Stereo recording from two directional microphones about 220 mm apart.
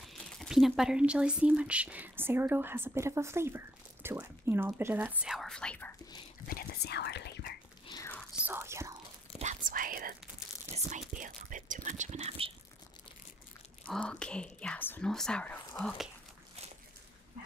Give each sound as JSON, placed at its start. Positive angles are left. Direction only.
{"t": 0.0, "sound": "speech", "side_deg": 0}
{"t": 6.5, "sound": "whispering", "side_deg": 45}
{"t": 7.8, "sound": "whispering", "side_deg": 20}
{"t": 8.1, "sound": "whispering", "side_deg": -5}
{"t": 9.4, "sound": "whispering", "side_deg": -35}
{"t": 11.1, "sound": "speech", "side_deg": -35}
{"t": 13.8, "sound": "speech", "side_deg": 5}